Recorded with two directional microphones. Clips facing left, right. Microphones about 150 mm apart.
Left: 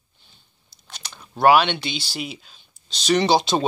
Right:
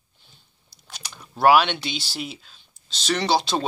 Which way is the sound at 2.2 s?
5° left (ahead or behind).